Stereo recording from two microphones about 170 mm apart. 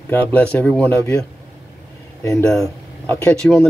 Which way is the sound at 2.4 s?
5° left (ahead or behind).